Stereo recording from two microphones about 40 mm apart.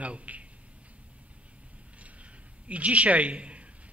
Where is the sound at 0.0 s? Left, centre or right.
Right.